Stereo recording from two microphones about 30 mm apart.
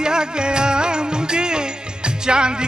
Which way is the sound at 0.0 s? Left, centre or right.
Right.